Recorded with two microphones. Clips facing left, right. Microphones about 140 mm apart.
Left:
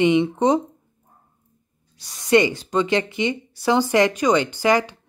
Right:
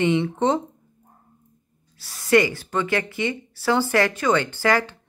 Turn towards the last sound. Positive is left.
turn(degrees=15)  # may be behind; listen again after turning